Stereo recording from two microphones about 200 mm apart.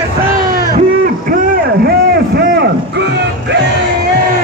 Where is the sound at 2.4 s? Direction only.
60° right (ahead or behind).